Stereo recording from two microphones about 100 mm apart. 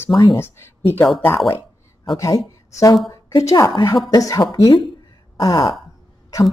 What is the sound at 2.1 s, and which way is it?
A woman's voice, 35° left (ahead or behind).